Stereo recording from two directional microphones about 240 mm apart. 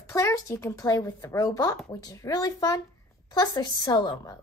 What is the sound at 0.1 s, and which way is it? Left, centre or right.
A woman's voice, centre.